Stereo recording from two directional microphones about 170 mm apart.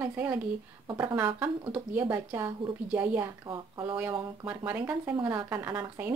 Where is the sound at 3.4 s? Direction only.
30° right (ahead or behind).